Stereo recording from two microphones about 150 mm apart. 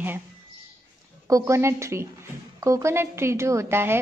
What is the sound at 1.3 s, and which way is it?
A woman's voice, 20° right (ahead or behind).